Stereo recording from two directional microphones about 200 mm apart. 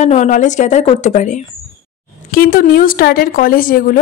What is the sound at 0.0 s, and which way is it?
Speech, 35° left (ahead or behind).